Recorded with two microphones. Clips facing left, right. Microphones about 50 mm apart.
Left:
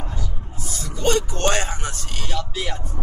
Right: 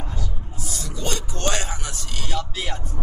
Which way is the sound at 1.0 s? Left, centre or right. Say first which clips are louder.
Left 7 dB; left.